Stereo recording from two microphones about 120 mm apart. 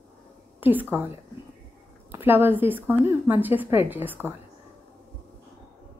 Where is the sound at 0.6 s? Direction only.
15° right (ahead or behind).